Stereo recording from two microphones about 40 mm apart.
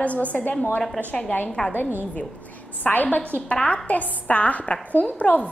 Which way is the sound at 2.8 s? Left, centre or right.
Left.